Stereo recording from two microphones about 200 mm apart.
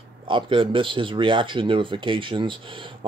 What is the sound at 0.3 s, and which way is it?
Speech, 25° right (ahead or behind).